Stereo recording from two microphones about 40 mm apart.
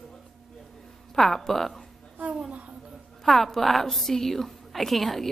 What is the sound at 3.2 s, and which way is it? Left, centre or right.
A woman's voice, centre.